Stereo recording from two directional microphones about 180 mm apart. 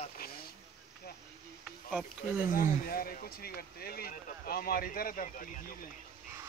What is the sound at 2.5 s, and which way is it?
Speech, 55° left (ahead or behind).